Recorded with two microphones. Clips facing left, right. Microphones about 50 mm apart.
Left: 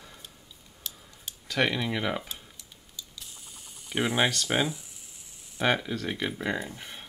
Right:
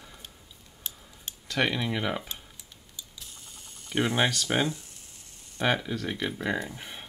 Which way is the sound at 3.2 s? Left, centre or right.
Centre.